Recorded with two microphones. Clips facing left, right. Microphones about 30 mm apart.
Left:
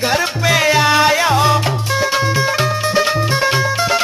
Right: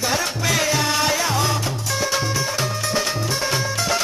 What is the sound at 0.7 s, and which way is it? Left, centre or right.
Music, left.